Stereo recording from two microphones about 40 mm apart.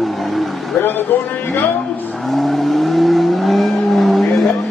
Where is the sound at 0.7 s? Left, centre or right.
Left.